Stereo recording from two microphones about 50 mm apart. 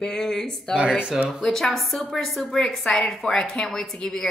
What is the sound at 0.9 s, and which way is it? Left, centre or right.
Speech, centre.